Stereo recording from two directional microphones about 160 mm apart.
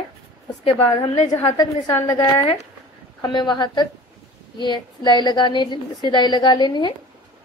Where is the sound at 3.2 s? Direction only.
30° left (ahead or behind).